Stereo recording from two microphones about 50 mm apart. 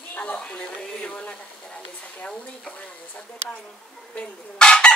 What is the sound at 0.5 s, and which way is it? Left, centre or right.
Speech, left.